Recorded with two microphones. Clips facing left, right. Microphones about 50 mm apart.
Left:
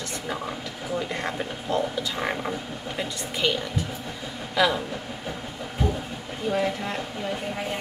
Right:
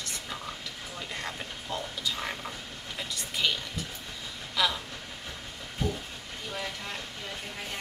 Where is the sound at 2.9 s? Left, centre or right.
Centre.